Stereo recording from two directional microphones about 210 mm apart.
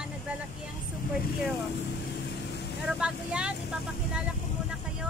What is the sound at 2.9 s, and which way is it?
Speech, 5° right (ahead or behind).